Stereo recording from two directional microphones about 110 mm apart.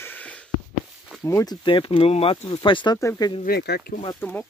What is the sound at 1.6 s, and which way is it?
Speech, 50° left (ahead or behind).